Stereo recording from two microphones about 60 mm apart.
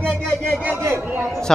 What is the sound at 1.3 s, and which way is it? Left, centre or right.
Music, centre.